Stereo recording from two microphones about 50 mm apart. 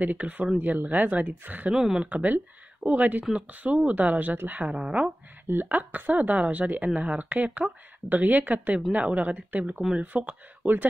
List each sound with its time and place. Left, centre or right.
0.0 s speech: right
1.7 s speech: centre
2.0 s speech: right
4.7 s speech: centre
5.5 s speech: right